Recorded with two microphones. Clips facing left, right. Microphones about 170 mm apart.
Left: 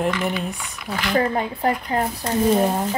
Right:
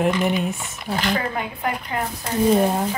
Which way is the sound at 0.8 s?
35° right (ahead or behind).